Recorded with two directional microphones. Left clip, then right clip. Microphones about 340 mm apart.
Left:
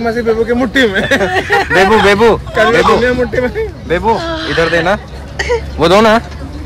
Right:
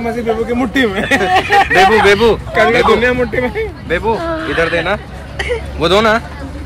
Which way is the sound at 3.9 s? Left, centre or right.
Left.